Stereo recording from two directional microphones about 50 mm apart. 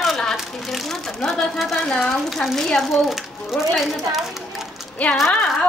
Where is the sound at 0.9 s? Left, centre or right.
Centre.